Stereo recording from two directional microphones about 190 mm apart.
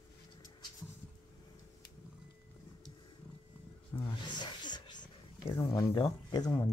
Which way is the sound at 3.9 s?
20° left (ahead or behind).